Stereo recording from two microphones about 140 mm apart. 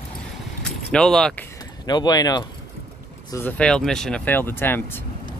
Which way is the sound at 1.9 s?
30° left (ahead or behind).